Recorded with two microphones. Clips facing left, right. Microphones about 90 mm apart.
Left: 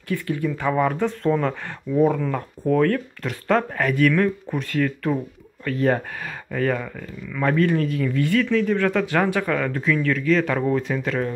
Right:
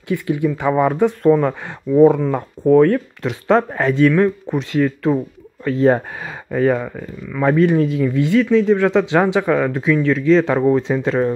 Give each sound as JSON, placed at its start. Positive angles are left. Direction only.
{"t": 0.1, "sound": "speech", "side_deg": -15}